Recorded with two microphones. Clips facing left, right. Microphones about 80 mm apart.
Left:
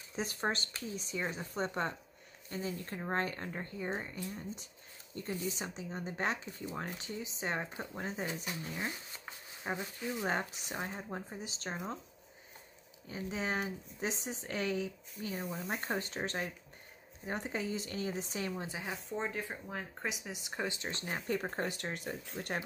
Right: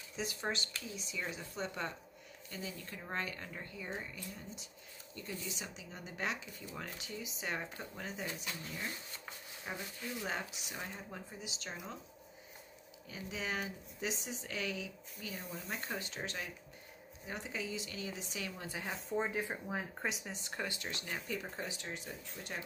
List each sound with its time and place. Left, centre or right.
0.1 s speech: left
9.7 s speech: left
13.1 s speech: left
18.6 s speech: centre
18.9 s speech: centre
19.2 s speech: centre
20.1 s speech: centre
20.3 s speech: centre; by 22.6 s left